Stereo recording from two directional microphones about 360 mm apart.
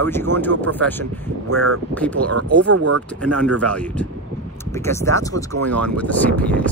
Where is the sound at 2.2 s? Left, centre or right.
Right.